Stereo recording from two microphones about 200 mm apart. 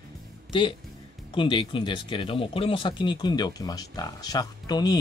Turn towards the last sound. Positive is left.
turn(degrees=20)  # may be behind; listen again after turning